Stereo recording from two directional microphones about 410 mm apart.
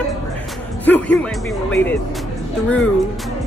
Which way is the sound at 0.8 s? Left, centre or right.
Centre.